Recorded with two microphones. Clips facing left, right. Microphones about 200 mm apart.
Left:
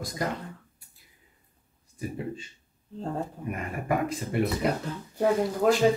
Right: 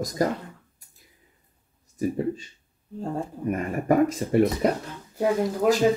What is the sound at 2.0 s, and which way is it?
Speech, 40° right (ahead or behind).